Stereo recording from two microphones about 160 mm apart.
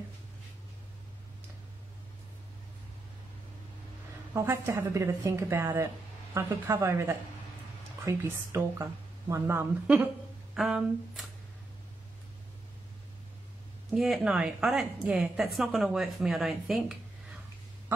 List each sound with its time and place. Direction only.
4.3 s a woman's voice: 15° right (ahead or behind)
10.5 s speech: centre (ahead or behind)
13.8 s a woman's voice: centre (ahead or behind)